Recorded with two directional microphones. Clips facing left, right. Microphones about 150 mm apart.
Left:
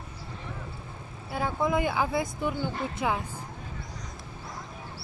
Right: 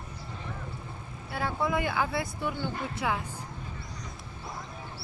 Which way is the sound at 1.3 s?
20° left (ahead or behind).